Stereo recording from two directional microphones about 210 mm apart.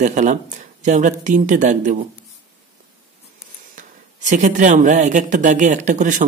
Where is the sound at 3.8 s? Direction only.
35° right (ahead or behind).